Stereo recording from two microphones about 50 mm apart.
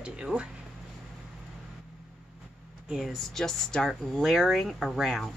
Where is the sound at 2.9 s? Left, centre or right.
Centre.